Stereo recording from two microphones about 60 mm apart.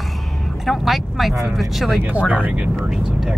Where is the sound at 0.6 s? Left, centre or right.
Centre.